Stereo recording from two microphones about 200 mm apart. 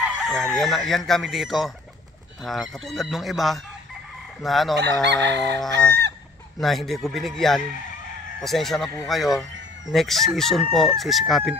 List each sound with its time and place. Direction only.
0.0 s chicken: centre (ahead or behind)
5.0 s chicken: 60° right (ahead or behind)
6.6 s chicken: centre (ahead or behind)